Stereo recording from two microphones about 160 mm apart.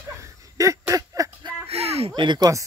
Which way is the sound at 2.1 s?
30° right (ahead or behind).